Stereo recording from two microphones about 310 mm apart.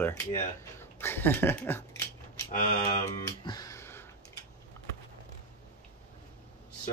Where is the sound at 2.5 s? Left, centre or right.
Left.